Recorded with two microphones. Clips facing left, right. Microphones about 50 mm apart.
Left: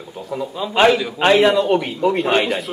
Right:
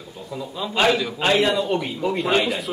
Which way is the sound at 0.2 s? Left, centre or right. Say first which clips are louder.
Left 6 dB; left.